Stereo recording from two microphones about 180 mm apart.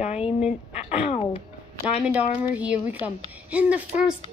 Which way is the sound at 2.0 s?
5° right (ahead or behind).